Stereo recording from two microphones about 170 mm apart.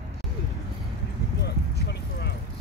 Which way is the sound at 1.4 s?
75° left (ahead or behind).